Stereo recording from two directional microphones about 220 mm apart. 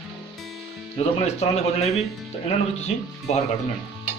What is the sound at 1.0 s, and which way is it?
Speech, 30° left (ahead or behind).